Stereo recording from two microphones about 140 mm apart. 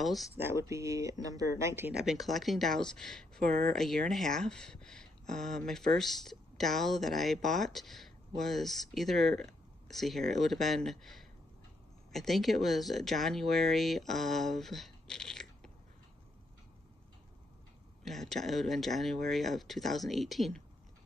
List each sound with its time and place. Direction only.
0.0 s speech: centre (ahead or behind)
0.4 s speech: 20° right (ahead or behind)
2.0 s speech: centre (ahead or behind)
18.0 s speech: centre (ahead or behind)